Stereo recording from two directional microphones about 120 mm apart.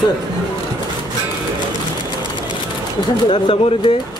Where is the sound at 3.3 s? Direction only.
45° left (ahead or behind).